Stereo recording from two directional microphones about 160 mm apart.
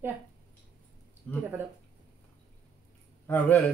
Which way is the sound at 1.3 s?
5° left (ahead or behind).